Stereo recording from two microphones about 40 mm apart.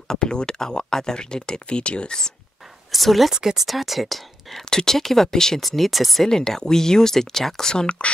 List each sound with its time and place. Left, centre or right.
0.1 s speech: centre
2.9 s speech: centre
3.3 s speech: centre
4.6 s speech: centre
5.6 s speech: centre
6.2 s speech: centre